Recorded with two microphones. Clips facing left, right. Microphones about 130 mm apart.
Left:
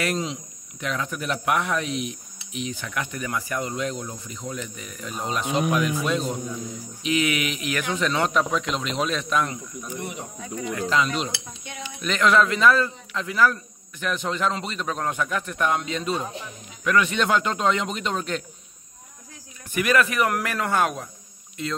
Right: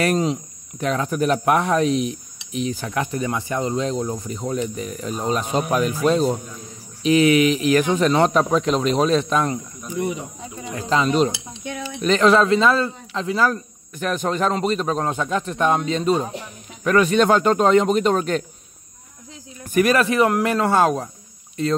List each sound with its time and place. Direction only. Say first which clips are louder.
0.0 s speech: right 7 dB; 45° right (ahead or behind)
13.9 s speech: right 5 dB; 45° right (ahead or behind)
19.7 s speech: right 5 dB; 35° right (ahead or behind)